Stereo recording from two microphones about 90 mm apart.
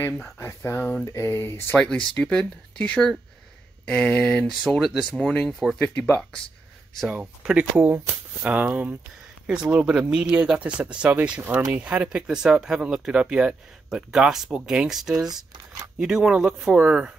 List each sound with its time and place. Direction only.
0.0 s speech: 30° left (ahead or behind)
1.0 s a sound: 30° left (ahead or behind)
1.8 s speech: 10° left (ahead or behind)
7.1 s speech: 10° right (ahead or behind)
15.2 s speech: 50° right (ahead or behind)
16.0 s speech: 5° right (ahead or behind)